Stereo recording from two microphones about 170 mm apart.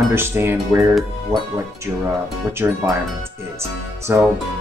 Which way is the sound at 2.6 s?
15° right (ahead or behind).